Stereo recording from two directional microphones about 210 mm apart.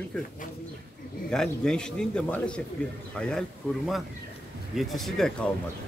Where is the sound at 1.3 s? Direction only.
5° left (ahead or behind).